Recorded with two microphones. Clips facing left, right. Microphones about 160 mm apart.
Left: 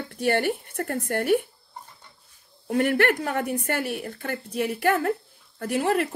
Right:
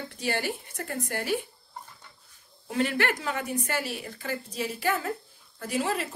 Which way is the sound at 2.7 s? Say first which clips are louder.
Left 5 dB; 60° left (ahead or behind).